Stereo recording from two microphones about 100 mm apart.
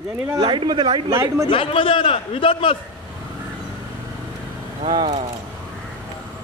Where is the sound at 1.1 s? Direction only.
30° right (ahead or behind).